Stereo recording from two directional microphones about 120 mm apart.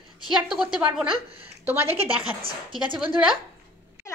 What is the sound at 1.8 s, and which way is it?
Speech, 55° right (ahead or behind).